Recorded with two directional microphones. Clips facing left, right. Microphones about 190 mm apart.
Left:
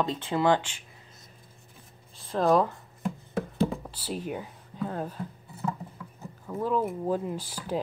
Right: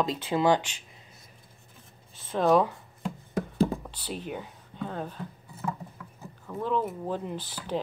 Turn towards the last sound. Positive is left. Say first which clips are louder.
# left 1 dB
turn(degrees=10)  # may be behind; listen again after turning